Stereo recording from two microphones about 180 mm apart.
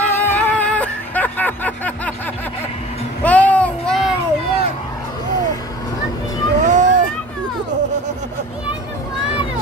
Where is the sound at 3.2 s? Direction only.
10° left (ahead or behind).